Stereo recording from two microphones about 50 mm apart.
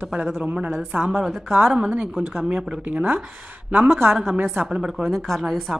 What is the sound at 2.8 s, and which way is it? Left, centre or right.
Speech, right.